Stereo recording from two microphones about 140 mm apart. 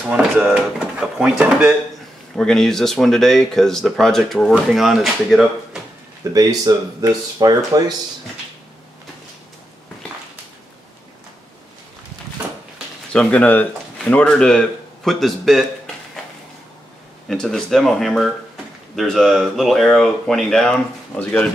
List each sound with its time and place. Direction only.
0.5 s speech: 5° right (ahead or behind)
2.3 s speech: 5° left (ahead or behind)
6.3 s speech: 25° right (ahead or behind)
13.1 s speech: 10° left (ahead or behind)
17.3 s speech: 5° left (ahead or behind)